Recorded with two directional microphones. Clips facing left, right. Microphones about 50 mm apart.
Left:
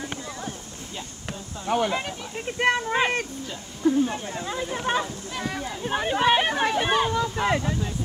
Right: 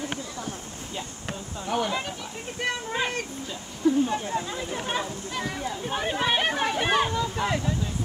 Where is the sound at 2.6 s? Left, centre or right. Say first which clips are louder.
Left 6 dB; left.